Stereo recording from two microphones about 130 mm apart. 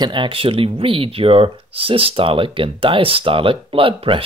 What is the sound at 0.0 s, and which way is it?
Speech, 40° right (ahead or behind).